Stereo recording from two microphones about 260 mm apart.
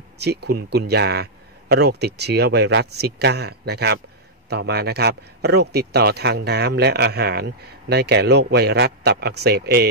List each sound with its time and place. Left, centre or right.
0.2 s speech: right